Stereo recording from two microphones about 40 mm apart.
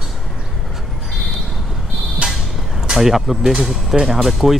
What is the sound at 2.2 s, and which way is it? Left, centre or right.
Vehicle, right.